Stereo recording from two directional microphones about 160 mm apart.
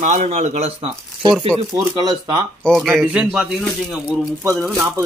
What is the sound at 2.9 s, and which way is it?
A man's voice, 10° right (ahead or behind).